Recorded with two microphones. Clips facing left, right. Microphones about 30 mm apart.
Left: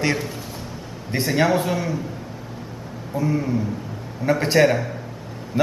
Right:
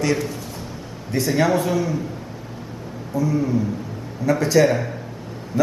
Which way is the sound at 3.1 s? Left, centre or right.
Left.